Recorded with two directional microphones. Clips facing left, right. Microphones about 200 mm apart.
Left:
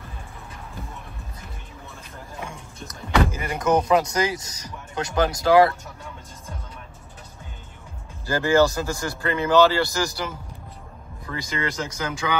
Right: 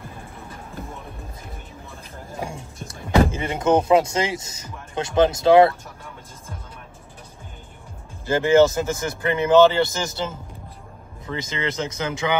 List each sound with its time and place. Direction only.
2.4 s speech: 30° right (ahead or behind)
8.3 s speech: 20° right (ahead or behind)